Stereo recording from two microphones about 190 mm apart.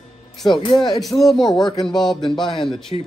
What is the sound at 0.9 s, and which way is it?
A man's voice, centre (ahead or behind).